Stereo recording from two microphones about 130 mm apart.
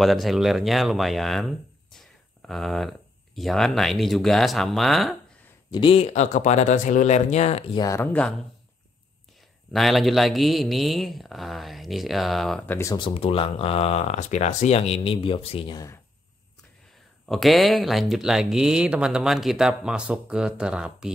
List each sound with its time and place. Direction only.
0.0 s speech: centre (ahead or behind)
5.7 s speech: 40° left (ahead or behind)
6.2 s speech: 70° left (ahead or behind)
7.7 s speech: 30° left (ahead or behind)
8.0 s speech: 10° left (ahead or behind)
9.7 s speech: centre (ahead or behind)
12.6 s speech: 20° left (ahead or behind)
12.9 s speech: 45° left (ahead or behind)
15.7 s speech: 25° left (ahead or behind)
17.3 s speech: centre (ahead or behind)